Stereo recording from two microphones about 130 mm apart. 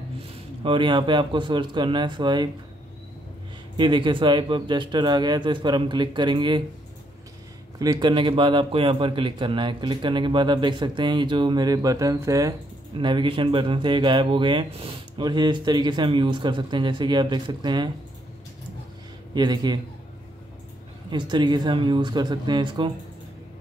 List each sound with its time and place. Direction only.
0.7 s speech: 40° right (ahead or behind)
3.7 s speech: 40° right (ahead or behind)
7.8 s speech: 30° right (ahead or behind)
13.0 s speech: 40° right (ahead or behind)
19.3 s speech: 35° right (ahead or behind)
21.1 s speech: 35° right (ahead or behind)